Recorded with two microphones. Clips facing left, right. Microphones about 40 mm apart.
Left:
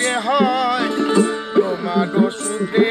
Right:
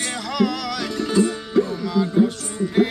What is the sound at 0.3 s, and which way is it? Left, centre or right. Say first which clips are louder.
Music: left 5 dB; left.